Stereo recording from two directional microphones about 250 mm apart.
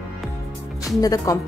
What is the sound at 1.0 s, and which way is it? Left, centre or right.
Speech, centre.